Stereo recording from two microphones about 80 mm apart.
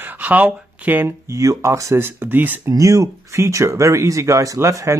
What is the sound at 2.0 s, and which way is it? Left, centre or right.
Speech, right.